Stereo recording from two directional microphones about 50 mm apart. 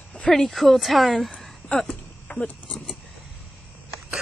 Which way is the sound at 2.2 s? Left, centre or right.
Left.